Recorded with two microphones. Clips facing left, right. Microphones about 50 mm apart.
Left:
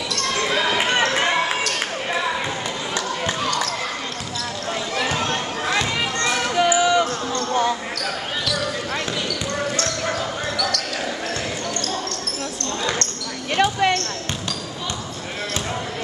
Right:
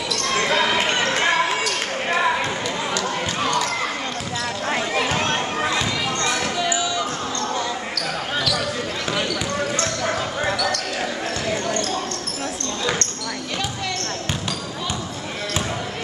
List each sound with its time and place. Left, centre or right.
0.1 s basketball bounce: centre
5.8 s children playing: centre
6.5 s basketball bounce: left
13.6 s basketball bounce: left